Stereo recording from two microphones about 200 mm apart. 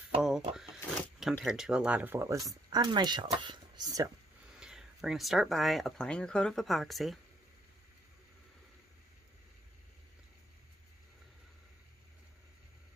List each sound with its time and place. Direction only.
0.2 s cash register: centre (ahead or behind)
1.4 s speech: 5° right (ahead or behind); by 4.1 s 20° right (ahead or behind)
4.6 s speech: 5° right (ahead or behind)